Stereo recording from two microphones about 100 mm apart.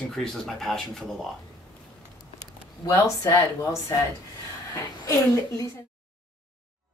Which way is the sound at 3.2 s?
35° left (ahead or behind).